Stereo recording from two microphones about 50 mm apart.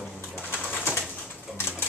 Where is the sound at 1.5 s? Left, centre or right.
Left.